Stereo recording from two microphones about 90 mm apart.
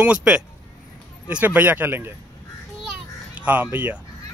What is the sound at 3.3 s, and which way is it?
Speech, 15° right (ahead or behind).